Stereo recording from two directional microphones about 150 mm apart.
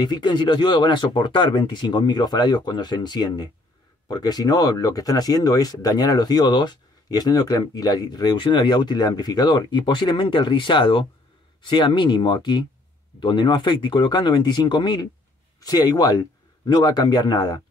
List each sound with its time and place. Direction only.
0.0 s speech: 30° left (ahead or behind)